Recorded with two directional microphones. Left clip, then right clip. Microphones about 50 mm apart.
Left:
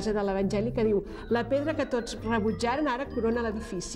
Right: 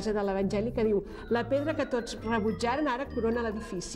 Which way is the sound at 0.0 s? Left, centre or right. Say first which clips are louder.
Left 1 dB; right.